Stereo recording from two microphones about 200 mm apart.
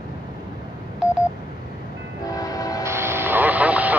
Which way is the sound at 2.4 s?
15° left (ahead or behind).